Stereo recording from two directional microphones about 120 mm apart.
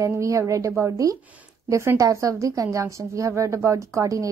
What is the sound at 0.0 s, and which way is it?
A woman's voice, 25° right (ahead or behind).